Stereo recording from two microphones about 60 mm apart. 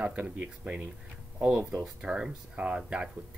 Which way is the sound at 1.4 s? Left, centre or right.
Centre.